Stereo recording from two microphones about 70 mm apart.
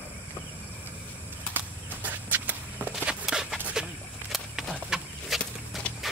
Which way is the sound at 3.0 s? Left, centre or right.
Centre.